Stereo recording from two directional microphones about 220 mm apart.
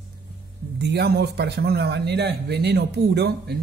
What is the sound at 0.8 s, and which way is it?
Speech, 50° right (ahead or behind).